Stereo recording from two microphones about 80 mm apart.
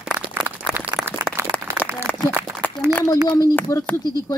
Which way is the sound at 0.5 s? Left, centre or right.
Left.